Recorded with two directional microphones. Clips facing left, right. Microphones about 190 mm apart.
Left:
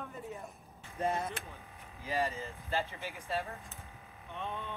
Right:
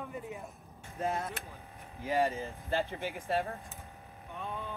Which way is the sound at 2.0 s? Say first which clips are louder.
Right 4 dB; 55° right (ahead or behind).